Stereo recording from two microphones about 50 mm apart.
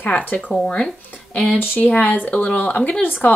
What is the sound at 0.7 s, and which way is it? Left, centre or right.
Speech, left.